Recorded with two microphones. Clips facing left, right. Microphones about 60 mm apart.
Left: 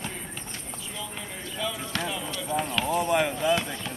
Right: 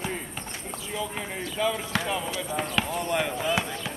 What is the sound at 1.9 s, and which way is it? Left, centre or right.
Run, centre.